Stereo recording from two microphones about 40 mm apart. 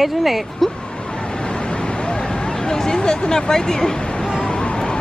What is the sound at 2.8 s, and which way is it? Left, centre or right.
Speech, centre.